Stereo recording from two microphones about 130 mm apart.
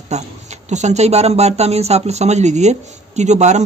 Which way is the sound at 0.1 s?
60° right (ahead or behind).